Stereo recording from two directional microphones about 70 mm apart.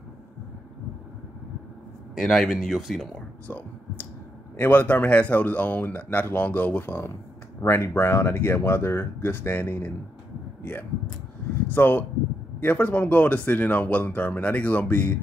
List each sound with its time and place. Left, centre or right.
2.1 s speech: centre
3.4 s a sound: left
4.6 s speech: left